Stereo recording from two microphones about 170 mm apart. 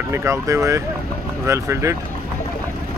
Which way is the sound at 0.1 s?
15° right (ahead or behind).